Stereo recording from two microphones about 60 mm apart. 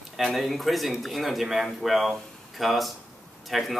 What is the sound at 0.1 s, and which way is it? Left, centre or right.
A man's voice, centre.